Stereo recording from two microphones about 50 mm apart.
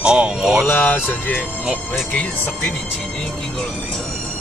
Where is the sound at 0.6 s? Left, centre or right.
Left.